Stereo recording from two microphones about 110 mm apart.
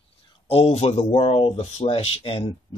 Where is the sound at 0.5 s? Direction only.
60° left (ahead or behind).